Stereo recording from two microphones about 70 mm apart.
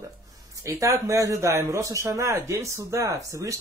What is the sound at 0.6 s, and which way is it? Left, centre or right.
Speech, right.